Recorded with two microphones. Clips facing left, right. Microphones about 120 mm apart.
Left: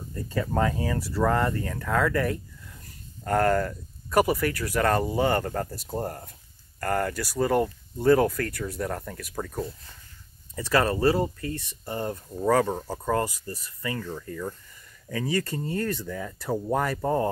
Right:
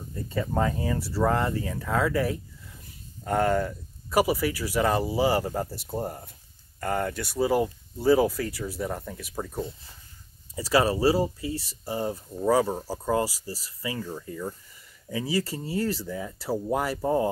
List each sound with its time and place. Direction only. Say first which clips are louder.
0.1 s speech: left 1 dB; centre (ahead or behind)
10.5 s speech: right 1 dB; 10° right (ahead or behind)